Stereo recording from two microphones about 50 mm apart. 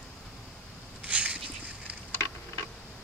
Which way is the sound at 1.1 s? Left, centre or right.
Right.